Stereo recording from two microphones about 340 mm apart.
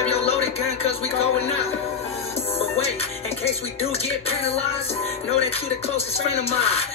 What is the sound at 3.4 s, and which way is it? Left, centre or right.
Music, centre.